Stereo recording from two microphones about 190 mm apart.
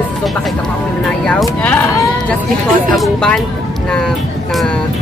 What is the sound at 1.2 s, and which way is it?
Speech, 5° left (ahead or behind).